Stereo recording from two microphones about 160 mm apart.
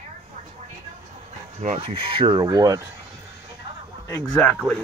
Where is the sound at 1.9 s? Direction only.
35° right (ahead or behind).